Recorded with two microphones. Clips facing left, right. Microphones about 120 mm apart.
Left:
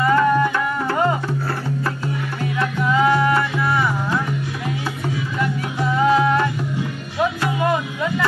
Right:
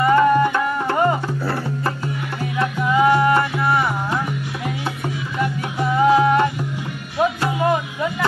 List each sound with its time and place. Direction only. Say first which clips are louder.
0.0 s music: right 2 dB; 25° right (ahead or behind)
2.6 s music: right 1 dB; 25° right (ahead or behind)
6.0 s music: right 2 dB; 20° right (ahead or behind)